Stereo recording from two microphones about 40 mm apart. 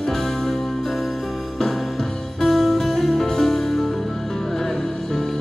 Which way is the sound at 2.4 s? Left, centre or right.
Centre.